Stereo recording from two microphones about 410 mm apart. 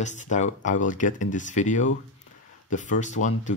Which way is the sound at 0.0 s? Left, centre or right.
Centre.